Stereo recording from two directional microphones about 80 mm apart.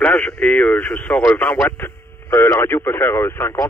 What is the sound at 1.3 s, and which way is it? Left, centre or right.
Speech, left.